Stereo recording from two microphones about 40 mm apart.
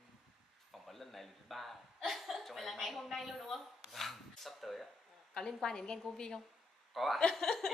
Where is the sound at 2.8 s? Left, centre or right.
Centre.